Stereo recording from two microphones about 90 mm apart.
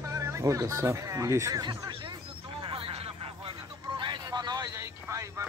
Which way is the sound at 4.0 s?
55° right (ahead or behind).